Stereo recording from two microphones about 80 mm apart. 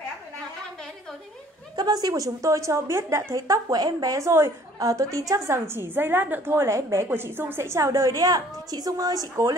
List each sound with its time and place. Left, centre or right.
1.8 s a woman's voice: right
5.8 s a woman's voice: right